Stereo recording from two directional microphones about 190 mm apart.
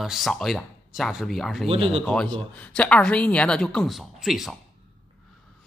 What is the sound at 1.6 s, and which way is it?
Speech, 30° right (ahead or behind).